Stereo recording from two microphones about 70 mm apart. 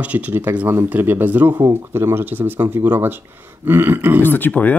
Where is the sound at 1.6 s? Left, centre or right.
Right.